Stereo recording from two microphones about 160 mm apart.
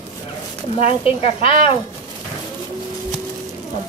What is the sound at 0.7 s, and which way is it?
Speech, 35° left (ahead or behind).